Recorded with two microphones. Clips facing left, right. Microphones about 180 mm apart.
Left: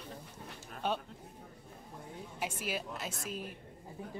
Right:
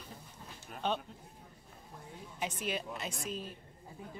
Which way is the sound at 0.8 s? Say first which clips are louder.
Even; 10° left (ahead or behind).